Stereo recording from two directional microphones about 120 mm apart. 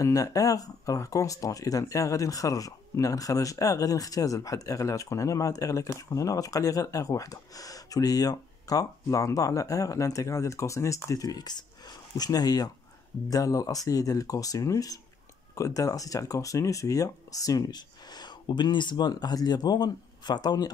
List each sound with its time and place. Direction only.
0.0 s speech: 30° left (ahead or behind)